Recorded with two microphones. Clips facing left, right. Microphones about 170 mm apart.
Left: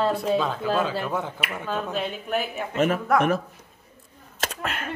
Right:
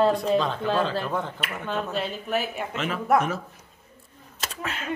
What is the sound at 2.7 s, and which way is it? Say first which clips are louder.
Speech: left 9 dB; 45° left (ahead or behind).